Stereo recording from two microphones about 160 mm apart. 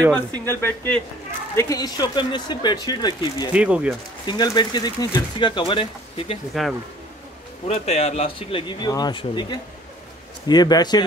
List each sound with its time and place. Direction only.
0.5 s speech: 15° left (ahead or behind)
3.5 s speech: 5° right (ahead or behind)
4.3 s speech: 25° left (ahead or behind)
6.5 s speech: centre (ahead or behind)
7.6 s speech: 40° left (ahead or behind); by 11.1 s 25° left (ahead or behind)